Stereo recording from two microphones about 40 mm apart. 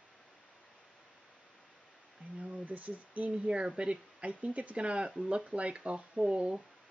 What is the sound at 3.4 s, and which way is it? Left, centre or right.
Speech, right.